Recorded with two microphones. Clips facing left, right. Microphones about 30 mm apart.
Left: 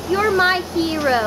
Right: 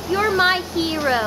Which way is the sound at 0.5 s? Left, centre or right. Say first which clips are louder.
Left 2 dB; centre.